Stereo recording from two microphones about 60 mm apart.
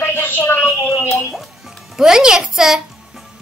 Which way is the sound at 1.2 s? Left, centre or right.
Centre.